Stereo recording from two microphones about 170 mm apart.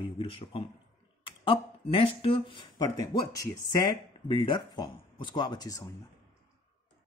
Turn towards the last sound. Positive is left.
turn(degrees=20)  # may be behind; listen again after turning